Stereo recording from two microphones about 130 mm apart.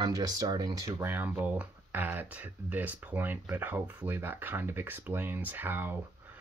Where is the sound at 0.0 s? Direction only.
30° right (ahead or behind).